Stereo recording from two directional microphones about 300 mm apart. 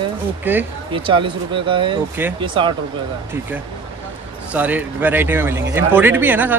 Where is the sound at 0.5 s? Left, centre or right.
Centre.